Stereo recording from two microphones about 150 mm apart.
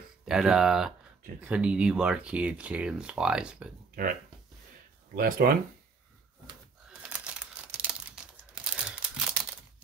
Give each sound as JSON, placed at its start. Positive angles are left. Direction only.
{"t": 0.2, "sound": "speech", "side_deg": -5}
{"t": 3.9, "sound": "speech", "side_deg": -70}
{"t": 6.9, "sound": "crumpling", "side_deg": -5}